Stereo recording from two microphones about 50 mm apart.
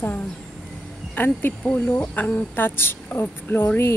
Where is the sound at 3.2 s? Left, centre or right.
Left.